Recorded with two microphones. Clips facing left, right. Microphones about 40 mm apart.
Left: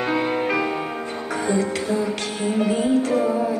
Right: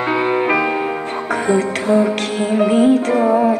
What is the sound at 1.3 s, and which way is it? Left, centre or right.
Music, right.